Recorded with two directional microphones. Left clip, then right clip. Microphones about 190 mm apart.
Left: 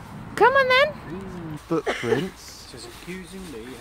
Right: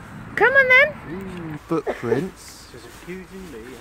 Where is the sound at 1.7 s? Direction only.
15° right (ahead or behind).